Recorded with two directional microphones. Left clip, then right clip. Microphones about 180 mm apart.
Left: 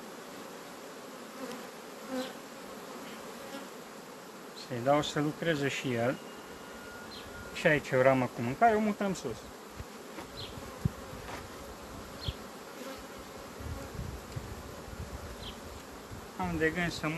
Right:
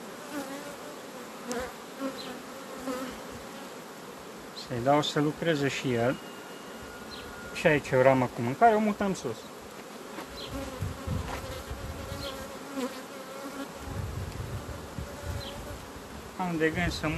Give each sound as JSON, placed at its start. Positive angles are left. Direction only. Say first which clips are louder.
{"t": 4.8, "sound": "speech", "louder": "right 3 dB", "side_deg": -25}
{"t": 7.5, "sound": "speech", "louder": "right 3 dB", "side_deg": -20}
{"t": 16.3, "sound": "speech", "louder": "right 3 dB", "side_deg": -10}